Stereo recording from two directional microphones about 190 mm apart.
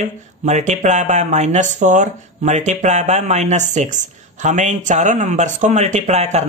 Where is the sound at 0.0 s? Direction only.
35° right (ahead or behind).